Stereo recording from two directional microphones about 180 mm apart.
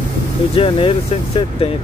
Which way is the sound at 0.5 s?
30° left (ahead or behind).